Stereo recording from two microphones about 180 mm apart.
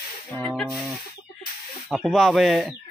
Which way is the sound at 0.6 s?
Centre (ahead or behind).